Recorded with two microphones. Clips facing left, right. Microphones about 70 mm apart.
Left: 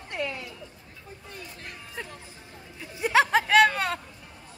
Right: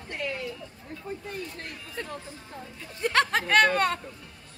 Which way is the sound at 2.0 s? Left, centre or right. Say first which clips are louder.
Right 5 dB; centre.